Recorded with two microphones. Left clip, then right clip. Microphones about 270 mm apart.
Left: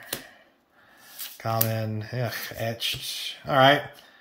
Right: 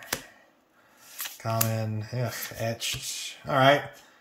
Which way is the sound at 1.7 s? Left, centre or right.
Centre.